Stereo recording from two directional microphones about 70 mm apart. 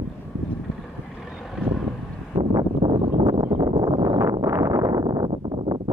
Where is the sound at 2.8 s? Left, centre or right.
Right.